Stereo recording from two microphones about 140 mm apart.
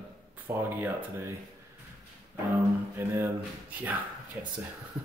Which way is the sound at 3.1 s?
15° right (ahead or behind).